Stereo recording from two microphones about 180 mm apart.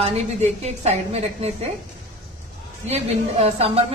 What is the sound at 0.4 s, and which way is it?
A woman's voice, 40° right (ahead or behind).